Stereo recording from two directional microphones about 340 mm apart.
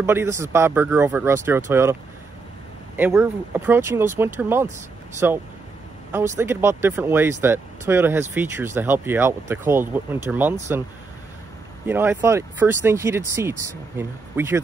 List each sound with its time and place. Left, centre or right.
0.0 s speech: centre
3.0 s speech: centre
11.8 s speech: centre